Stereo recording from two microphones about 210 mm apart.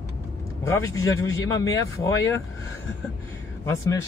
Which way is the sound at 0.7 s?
15° left (ahead or behind).